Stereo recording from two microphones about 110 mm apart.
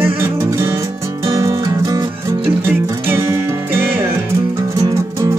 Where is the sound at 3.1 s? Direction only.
25° right (ahead or behind).